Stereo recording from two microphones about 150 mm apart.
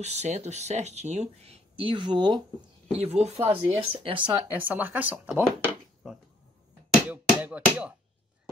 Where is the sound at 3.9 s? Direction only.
35° right (ahead or behind).